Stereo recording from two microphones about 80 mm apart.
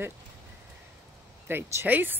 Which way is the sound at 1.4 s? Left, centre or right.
Right.